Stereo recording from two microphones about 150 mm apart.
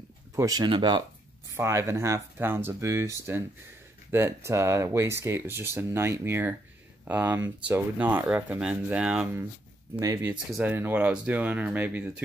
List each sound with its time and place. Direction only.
0.4 s speech: 25° right (ahead or behind)
1.5 s speech: 15° right (ahead or behind)